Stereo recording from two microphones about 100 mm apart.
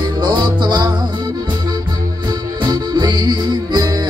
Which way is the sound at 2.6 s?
45° right (ahead or behind).